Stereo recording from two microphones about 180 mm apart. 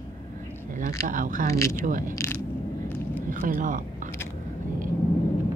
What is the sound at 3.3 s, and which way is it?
Speech, 50° right (ahead or behind).